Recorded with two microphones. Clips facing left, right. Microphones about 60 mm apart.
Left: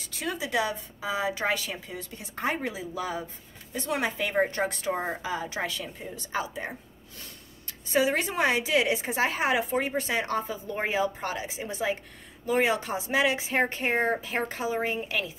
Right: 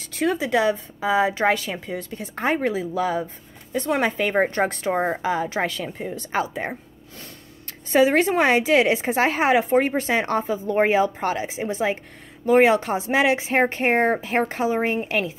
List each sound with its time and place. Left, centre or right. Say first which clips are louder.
0.0 s a woman's voice: right 10 dB; right
5.2 s a woman's voice: right 8 dB; right